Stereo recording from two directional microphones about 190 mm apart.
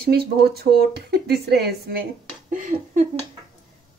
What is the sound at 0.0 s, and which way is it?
Speech, 55° right (ahead or behind).